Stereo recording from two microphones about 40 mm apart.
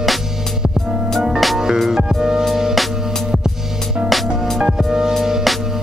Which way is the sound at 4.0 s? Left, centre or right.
Centre.